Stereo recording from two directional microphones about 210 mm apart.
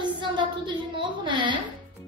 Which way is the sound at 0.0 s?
20° right (ahead or behind).